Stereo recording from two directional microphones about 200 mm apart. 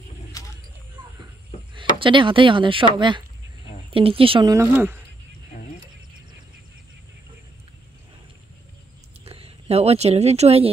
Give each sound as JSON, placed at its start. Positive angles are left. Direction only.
{"t": 1.8, "sound": "speech", "side_deg": -25}
{"t": 9.2, "sound": "speech", "side_deg": -30}